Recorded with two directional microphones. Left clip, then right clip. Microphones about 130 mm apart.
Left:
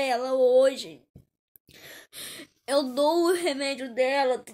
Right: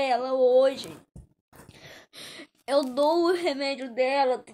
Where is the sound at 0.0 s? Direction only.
35° left (ahead or behind).